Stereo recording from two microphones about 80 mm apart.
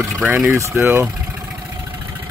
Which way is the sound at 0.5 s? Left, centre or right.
Right.